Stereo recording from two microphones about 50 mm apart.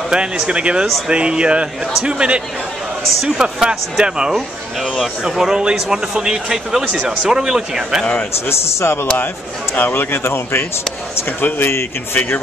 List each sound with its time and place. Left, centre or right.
0.1 s a man's voice: right
5.4 s a man's voice: centre
8.5 s a man's voice: left
9.8 s a man's voice: left
10.1 s a man's voice: left